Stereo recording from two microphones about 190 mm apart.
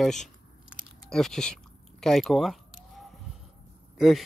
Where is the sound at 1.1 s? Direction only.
5° left (ahead or behind).